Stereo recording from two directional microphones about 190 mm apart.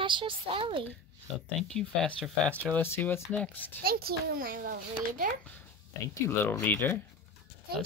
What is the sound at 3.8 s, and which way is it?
A child's voice, 55° right (ahead or behind).